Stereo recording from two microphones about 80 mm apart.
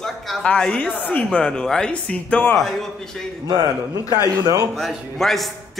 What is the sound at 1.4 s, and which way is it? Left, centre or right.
Speech, centre.